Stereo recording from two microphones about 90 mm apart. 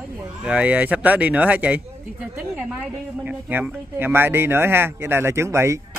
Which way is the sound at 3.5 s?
20° right (ahead or behind).